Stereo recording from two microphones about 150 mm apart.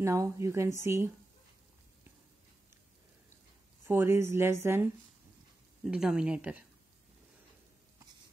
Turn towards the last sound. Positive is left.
turn(degrees=-10)  # may be behind; listen again after turning